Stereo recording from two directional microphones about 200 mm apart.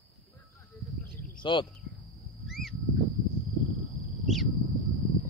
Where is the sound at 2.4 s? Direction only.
Centre (ahead or behind).